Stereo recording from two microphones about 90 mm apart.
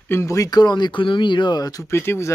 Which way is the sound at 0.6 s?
55° left (ahead or behind).